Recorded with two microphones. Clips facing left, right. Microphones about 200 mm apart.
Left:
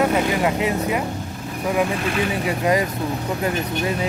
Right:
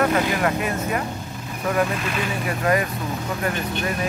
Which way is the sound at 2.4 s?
20° left (ahead or behind).